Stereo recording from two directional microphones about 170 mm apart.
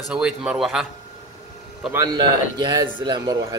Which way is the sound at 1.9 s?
20° right (ahead or behind).